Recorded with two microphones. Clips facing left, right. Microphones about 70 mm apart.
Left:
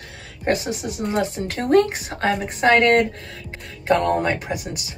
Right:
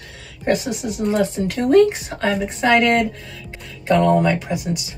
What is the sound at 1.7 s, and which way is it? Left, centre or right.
Speech, left.